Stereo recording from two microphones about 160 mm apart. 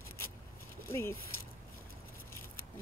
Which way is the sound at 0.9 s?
15° left (ahead or behind).